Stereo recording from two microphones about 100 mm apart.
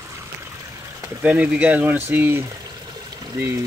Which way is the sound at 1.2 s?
15° right (ahead or behind).